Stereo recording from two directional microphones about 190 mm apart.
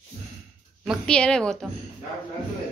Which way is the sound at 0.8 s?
5° left (ahead or behind).